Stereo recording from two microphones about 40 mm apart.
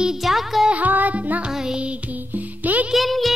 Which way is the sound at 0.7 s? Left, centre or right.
Right.